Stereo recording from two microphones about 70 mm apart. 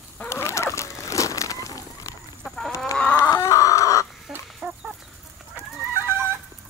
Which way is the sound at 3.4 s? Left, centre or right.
Left.